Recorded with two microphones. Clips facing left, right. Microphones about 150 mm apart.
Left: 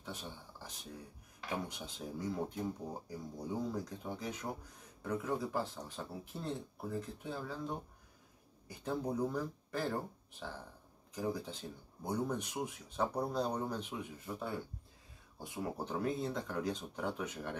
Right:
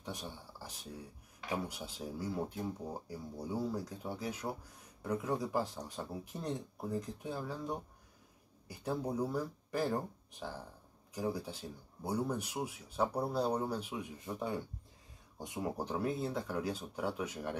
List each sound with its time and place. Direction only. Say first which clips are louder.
0.0 s speech: right 2 dB; 15° right (ahead or behind)